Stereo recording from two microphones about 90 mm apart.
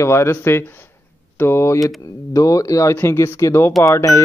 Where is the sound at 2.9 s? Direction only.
30° left (ahead or behind).